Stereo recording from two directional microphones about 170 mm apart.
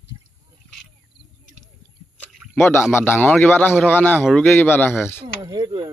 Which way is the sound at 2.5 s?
15° left (ahead or behind).